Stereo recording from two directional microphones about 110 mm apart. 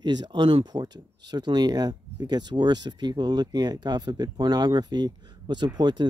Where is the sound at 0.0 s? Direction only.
40° right (ahead or behind).